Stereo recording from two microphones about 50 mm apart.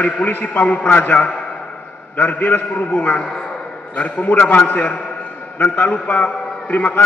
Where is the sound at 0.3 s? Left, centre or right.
Left.